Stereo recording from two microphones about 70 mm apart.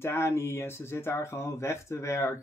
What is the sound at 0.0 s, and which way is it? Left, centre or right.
Speech, left.